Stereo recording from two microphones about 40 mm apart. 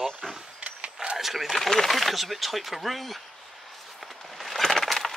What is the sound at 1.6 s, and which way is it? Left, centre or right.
Speech, centre.